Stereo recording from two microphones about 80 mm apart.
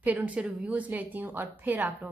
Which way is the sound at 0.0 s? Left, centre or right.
Centre.